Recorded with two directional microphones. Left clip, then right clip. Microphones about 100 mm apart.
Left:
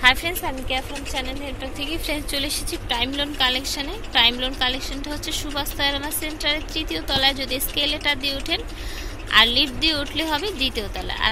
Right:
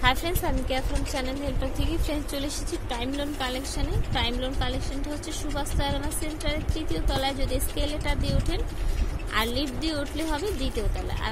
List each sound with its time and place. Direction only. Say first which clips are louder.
0.2 s a woman's voice: left 3 dB; 55° right (ahead or behind)
0.7 s a woman's voice: left 3 dB; 75° right (ahead or behind)
2.0 s a woman's voice: left 6 dB; 20° right (ahead or behind); by 11.2 s centre (ahead or behind)